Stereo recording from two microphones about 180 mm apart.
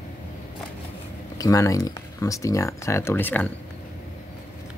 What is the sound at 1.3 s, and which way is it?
Speech, 20° left (ahead or behind).